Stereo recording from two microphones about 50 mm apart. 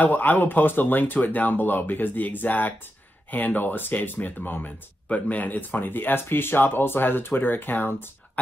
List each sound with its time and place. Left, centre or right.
0.0 s speech: left